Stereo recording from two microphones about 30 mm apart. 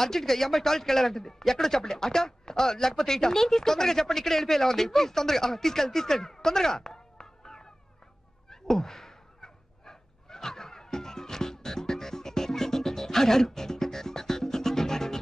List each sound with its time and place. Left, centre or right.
0.0 s speech: centre
8.5 s cat: centre